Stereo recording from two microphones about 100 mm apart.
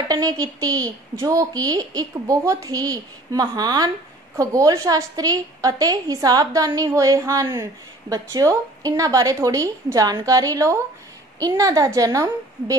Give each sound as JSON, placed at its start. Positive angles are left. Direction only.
{"t": 0.1, "sound": "a woman's voice", "side_deg": -40}